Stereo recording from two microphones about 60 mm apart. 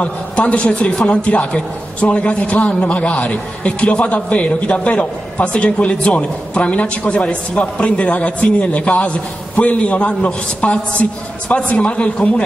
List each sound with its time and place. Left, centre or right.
0.0 s a man's voice: centre
1.1 s a man's voice: left